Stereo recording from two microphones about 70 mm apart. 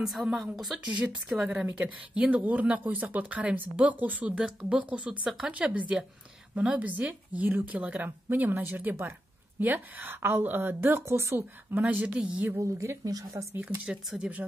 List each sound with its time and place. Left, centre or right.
0.0 s a woman's voice: centre
1.8 s speech: centre
4.4 s a woman's voice: centre
6.8 s a woman's voice: right
11.8 s speech: right
12.5 s speech: right
13.8 s speech: centre